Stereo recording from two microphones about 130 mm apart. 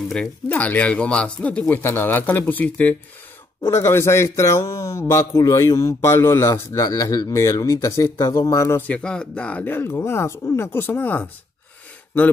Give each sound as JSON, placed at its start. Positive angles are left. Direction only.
{"t": 0.1, "sound": "a man's voice", "side_deg": 10}